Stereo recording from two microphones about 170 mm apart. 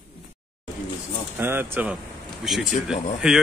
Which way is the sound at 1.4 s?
15° right (ahead or behind).